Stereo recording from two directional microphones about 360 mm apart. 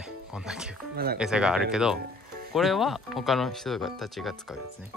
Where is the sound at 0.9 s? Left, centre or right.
Right.